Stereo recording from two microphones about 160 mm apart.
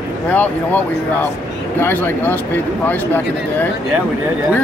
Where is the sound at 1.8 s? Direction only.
10° left (ahead or behind).